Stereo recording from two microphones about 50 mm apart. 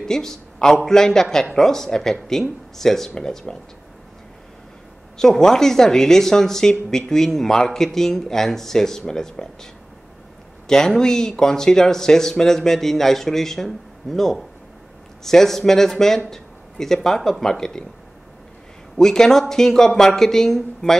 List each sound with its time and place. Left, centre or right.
0.0 s a man's voice: centre
5.1 s speech: centre
10.7 s speech: centre
18.9 s speech: centre